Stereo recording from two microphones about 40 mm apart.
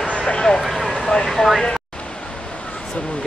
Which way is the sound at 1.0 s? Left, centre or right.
Centre.